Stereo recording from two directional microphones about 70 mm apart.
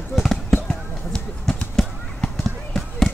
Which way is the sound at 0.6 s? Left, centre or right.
Centre.